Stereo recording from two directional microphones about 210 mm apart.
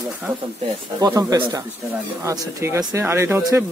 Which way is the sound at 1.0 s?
15° right (ahead or behind).